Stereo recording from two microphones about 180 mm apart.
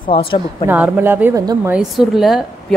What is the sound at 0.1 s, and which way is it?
Speech, 30° left (ahead or behind).